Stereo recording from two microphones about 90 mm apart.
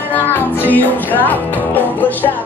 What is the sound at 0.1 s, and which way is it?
Music, 20° left (ahead or behind).